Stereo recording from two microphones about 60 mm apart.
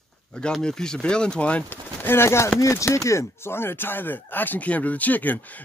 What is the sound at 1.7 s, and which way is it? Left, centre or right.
Speech, left.